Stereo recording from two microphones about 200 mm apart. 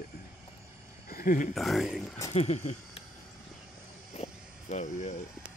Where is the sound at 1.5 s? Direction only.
Centre (ahead or behind).